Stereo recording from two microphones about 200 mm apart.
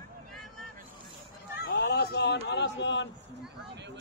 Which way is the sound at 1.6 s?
55° left (ahead or behind).